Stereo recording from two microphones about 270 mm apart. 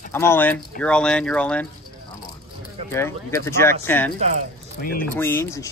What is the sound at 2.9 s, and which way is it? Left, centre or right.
Speech, centre.